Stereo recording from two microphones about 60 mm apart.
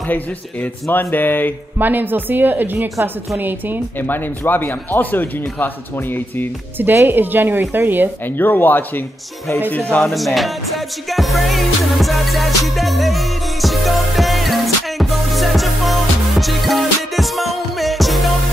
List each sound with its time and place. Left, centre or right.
0.0 s speech: left
1.8 s a woman's voice: right
4.0 s speech: left
6.8 s a woman's voice: right
8.4 s speech: left
9.7 s speech: left
10.0 s speech: centre
11.1 s music: centre